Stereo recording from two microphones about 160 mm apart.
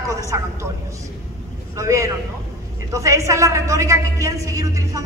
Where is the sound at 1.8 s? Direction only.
20° right (ahead or behind).